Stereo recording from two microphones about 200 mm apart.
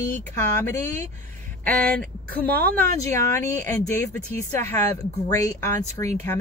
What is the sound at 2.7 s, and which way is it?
Speech, 10° left (ahead or behind).